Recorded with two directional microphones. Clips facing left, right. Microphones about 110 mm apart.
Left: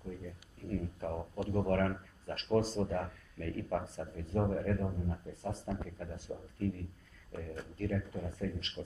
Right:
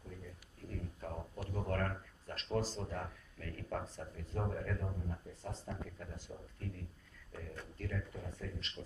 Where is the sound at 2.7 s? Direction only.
45° left (ahead or behind).